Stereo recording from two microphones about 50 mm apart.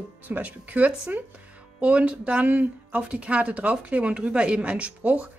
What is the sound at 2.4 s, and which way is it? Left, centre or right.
Speech, right.